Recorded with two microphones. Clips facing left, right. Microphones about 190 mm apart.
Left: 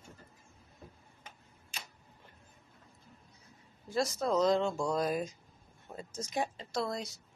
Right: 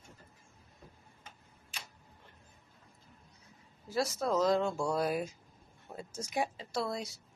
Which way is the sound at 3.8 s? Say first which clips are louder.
Left 1 dB; 5° right (ahead or behind).